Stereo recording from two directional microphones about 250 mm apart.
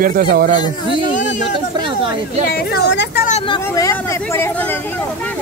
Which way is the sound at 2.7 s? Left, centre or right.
Left.